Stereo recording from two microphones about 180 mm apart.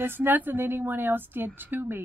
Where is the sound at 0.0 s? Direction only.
10° right (ahead or behind).